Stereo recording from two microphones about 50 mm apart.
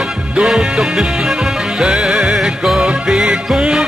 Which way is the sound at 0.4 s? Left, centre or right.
Centre.